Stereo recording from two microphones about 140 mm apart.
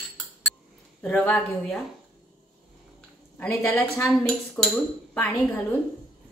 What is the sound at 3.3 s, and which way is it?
A woman's voice, 10° left (ahead or behind).